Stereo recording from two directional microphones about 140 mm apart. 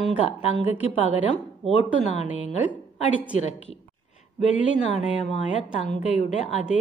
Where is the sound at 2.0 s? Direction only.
55° left (ahead or behind).